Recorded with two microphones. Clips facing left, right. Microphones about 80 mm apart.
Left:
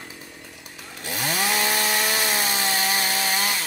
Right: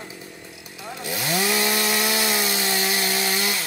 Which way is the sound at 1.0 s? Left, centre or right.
Left.